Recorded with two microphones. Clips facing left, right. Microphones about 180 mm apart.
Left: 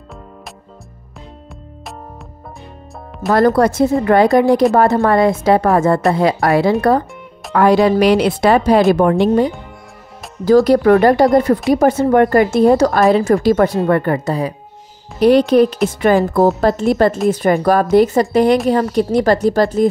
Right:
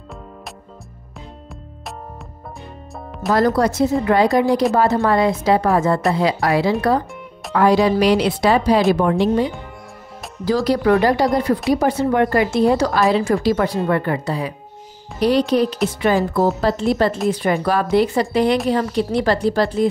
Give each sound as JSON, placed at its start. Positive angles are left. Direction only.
{"t": 3.3, "sound": "a woman's voice", "side_deg": 55}
{"t": 15.1, "sound": "speech", "side_deg": 55}